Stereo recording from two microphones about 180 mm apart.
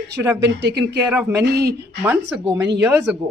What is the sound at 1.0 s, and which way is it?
Speech, 10° right (ahead or behind).